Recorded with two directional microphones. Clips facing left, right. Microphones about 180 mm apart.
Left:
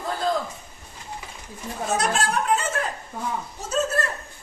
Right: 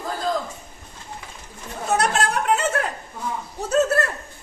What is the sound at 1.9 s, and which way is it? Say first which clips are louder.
Chatter: right 3 dB; 65° right (ahead or behind).